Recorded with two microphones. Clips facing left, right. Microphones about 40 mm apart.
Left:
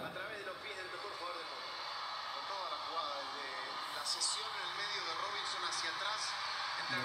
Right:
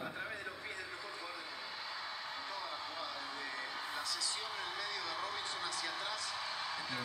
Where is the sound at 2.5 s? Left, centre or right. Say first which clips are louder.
Left 2 dB; left.